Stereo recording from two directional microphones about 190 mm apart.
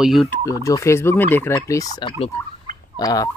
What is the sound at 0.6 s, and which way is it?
Turkey, 15° left (ahead or behind).